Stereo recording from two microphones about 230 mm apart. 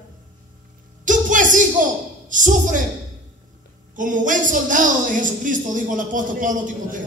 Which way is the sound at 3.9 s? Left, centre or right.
Right.